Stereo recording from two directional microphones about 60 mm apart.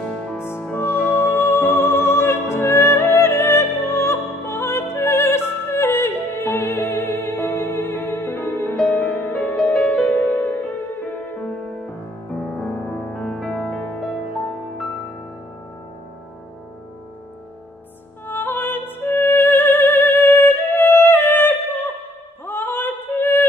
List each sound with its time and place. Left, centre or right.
0.0 s music: centre
0.4 s music: left
8.8 s music: left
13.1 s music: centre
18.2 s music: left
22.5 s a sound: left